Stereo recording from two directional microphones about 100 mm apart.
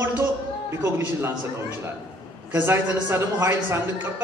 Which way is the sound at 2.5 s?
25° right (ahead or behind).